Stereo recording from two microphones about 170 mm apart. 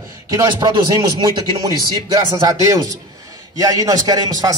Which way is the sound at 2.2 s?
20° right (ahead or behind).